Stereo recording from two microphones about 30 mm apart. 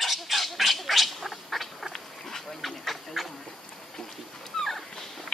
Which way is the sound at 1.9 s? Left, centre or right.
Centre.